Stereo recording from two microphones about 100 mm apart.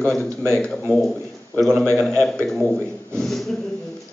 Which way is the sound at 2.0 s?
5° left (ahead or behind).